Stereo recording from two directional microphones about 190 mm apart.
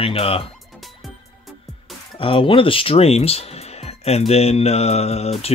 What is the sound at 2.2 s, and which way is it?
Speech, 30° left (ahead or behind).